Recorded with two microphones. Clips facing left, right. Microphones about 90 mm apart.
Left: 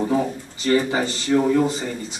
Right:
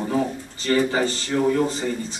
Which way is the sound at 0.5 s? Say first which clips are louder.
Left 1 dB; 15° left (ahead or behind).